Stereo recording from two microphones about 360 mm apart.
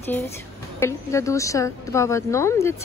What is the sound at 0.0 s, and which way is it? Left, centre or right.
A woman's voice, centre.